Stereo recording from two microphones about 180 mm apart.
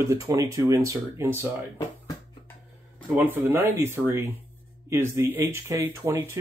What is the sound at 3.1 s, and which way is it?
Speech, 10° right (ahead or behind).